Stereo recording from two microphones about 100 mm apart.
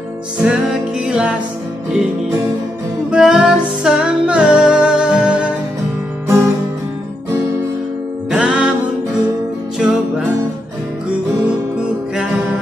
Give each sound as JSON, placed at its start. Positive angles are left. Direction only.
{"t": 0.4, "sound": "music", "side_deg": -5}
{"t": 3.1, "sound": "music", "side_deg": -10}
{"t": 6.2, "sound": "music", "side_deg": -25}
{"t": 8.3, "sound": "music", "side_deg": -10}